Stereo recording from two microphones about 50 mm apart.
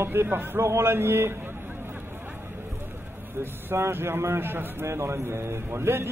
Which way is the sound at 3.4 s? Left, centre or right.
Right.